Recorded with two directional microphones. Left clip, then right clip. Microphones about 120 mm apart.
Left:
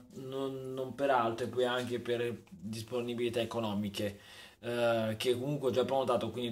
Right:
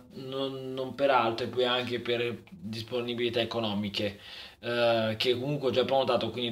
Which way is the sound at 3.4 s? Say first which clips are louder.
Right 5 dB; 10° left (ahead or behind).